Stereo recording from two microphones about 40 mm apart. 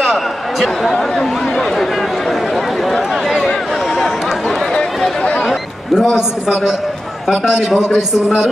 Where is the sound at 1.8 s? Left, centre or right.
Centre.